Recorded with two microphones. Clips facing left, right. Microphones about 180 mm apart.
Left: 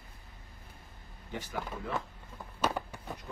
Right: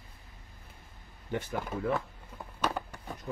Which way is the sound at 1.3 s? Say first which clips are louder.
Right 5 dB; 60° right (ahead or behind).